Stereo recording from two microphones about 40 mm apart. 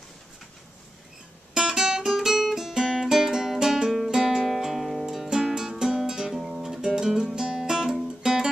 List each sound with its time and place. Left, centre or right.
1.5 s music: centre